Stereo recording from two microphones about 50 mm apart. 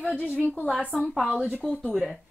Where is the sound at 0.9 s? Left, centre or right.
Centre.